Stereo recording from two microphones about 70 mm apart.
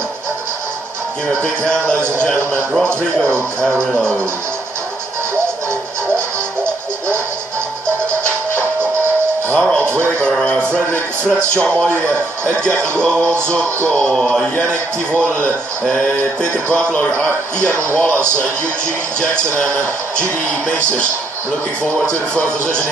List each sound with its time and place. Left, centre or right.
1.4 s a man's voice: centre
3.6 s a man's voice: centre
6.1 s music: right
9.5 s music: centre
11.2 s a man's voice: centre
17.6 s speech: right
19.1 s a man's voice: centre